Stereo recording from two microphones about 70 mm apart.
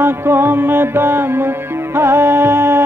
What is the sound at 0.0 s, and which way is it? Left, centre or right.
Music, right.